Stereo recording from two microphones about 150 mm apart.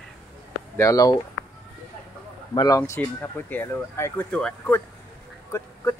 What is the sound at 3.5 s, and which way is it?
Speech, 15° left (ahead or behind).